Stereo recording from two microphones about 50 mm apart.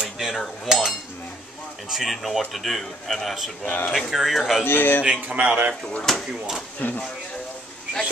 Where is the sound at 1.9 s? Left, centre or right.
Centre.